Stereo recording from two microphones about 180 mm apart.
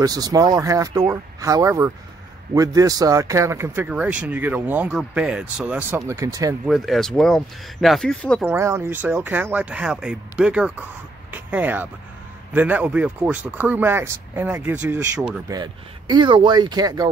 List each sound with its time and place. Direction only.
0.0 s a man's voice: 20° right (ahead or behind)
6.6 s speech: centre (ahead or behind)
8.5 s a man's voice: 15° right (ahead or behind)
15.4 s speech: 20° right (ahead or behind)